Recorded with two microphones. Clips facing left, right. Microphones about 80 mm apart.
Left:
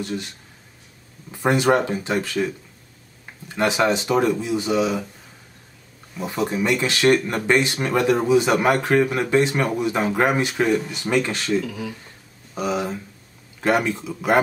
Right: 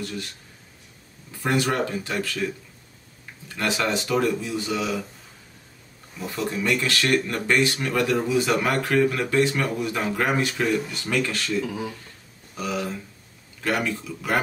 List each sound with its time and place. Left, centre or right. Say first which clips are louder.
0.0 s speech: left 4 dB; left
1.3 s speech: left 6 dB; left
6.1 s speech: left 4 dB; left
11.6 s speech: right 1 dB; right
12.5 s speech: left 4 dB; left